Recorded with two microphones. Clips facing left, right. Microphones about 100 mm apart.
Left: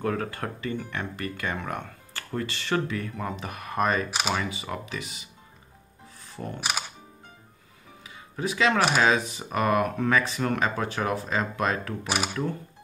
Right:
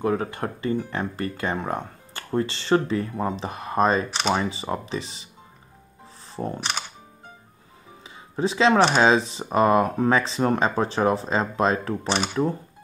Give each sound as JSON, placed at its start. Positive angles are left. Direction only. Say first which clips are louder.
{"t": 0.0, "sound": "speech", "louder": "right 4 dB", "side_deg": -20}
{"t": 8.0, "sound": "a sound", "louder": "right 6 dB", "side_deg": -30}
{"t": 8.9, "sound": "speech", "louder": "right 4 dB", "side_deg": -30}